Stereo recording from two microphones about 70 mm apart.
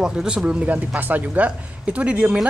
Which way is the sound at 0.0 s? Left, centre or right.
Centre.